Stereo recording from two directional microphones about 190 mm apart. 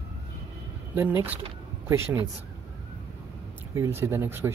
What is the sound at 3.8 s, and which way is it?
Speech, 15° right (ahead or behind).